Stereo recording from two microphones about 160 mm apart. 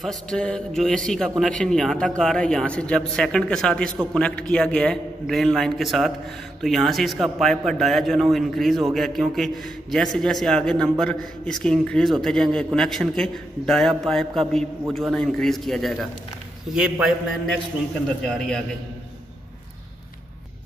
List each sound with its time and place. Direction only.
0.0 s a man's voice: centre (ahead or behind)
18.2 s a man's voice: 5° left (ahead or behind)